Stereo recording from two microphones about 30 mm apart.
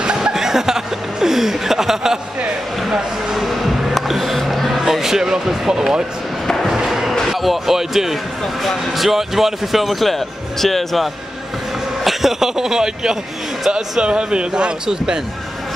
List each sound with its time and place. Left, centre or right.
0.0 s chuckle: right
3.3 s music: centre
4.6 s a sound: centre
5.0 s speech: centre
6.4 s chop: centre
6.7 s a sound: centre
7.2 s speech: centre
12.0 s speech: centre; by 14.0 s right
14.0 s speech: right